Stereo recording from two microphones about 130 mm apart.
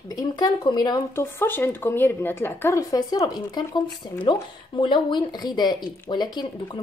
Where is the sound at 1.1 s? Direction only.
20° left (ahead or behind).